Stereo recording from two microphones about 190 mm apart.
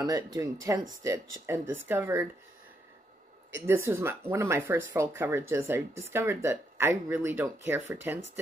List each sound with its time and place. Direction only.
0.0 s speech: 20° right (ahead or behind)
3.5 s speech: 15° right (ahead or behind)